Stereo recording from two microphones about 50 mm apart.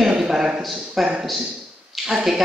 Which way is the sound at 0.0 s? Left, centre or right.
Centre.